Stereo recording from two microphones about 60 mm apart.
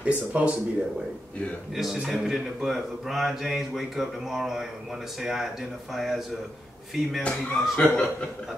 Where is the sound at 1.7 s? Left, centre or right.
Centre.